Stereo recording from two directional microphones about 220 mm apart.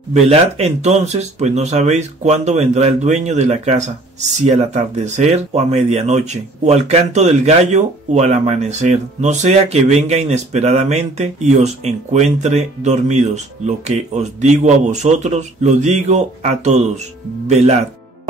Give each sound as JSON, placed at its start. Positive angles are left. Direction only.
{"t": 0.1, "sound": "speech", "side_deg": -30}